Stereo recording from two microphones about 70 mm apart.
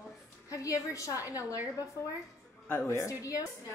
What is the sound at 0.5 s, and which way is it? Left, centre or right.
Speech, left.